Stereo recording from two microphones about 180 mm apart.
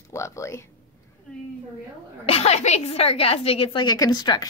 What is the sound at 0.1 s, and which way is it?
Speech, 15° left (ahead or behind).